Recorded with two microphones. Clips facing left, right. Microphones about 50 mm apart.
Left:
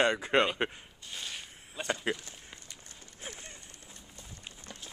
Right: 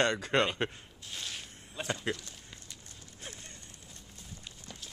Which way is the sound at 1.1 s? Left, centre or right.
Centre.